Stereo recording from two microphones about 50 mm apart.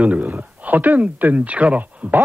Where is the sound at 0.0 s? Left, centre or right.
Right.